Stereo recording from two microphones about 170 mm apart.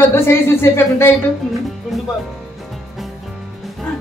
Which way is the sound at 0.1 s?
15° left (ahead or behind).